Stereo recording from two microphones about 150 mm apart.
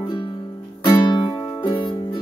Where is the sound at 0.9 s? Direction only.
30° left (ahead or behind).